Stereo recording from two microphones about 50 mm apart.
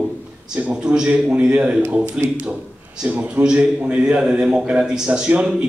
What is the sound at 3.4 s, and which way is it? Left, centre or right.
A man's voice, centre.